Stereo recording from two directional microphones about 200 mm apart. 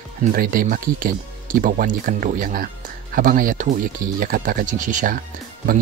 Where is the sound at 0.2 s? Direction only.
45° right (ahead or behind).